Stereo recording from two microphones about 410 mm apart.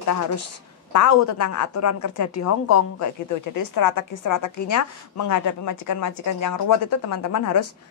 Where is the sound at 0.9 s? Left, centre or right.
Left.